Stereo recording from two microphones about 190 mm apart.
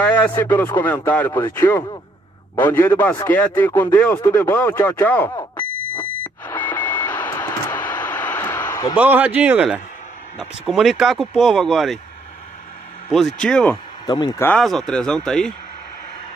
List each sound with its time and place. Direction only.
0.0 s speech: 10° left (ahead or behind)
6.4 s vehicle: 10° left (ahead or behind)
8.9 s speech: 10° right (ahead or behind)
13.1 s speech: 5° left (ahead or behind)
14.0 s speech: 20° left (ahead or behind)
14.5 s speech: centre (ahead or behind)